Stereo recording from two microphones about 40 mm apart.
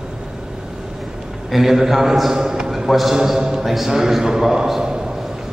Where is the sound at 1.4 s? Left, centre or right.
Centre.